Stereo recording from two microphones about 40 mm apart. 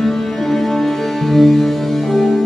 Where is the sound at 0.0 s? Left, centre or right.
Centre.